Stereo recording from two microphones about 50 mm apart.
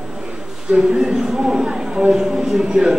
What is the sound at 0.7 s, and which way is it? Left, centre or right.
Speech, centre.